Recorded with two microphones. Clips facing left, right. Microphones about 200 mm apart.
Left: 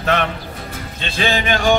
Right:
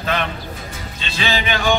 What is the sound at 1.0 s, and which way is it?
Music, 50° left (ahead or behind).